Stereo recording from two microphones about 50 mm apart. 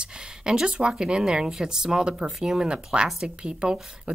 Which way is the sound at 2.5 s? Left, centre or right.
Right.